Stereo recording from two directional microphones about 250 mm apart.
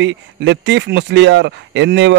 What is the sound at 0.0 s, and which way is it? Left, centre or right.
A man's voice, right.